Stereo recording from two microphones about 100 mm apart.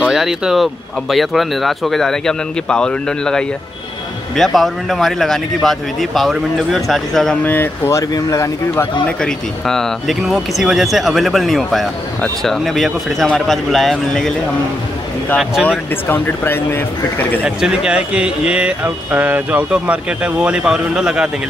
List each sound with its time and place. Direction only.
0.0 s speech: 5° right (ahead or behind)
7.4 s speech: 20° left (ahead or behind)
9.2 s speech: 5° left (ahead or behind)
15.6 s speech: 15° left (ahead or behind)
17.6 s speech: 10° right (ahead or behind)